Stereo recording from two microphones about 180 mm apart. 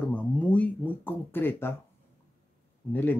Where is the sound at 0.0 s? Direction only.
5° left (ahead or behind).